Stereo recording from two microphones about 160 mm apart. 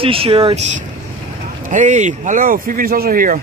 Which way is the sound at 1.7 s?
50° right (ahead or behind).